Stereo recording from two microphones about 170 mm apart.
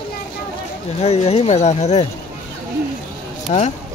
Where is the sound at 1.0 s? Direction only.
40° left (ahead or behind).